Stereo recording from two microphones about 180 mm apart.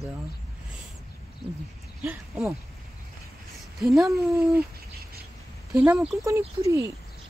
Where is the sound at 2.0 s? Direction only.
10° right (ahead or behind).